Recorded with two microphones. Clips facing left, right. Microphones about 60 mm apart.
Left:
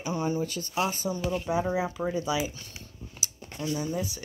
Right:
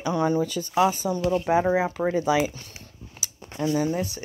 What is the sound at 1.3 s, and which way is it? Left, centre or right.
Speech, right.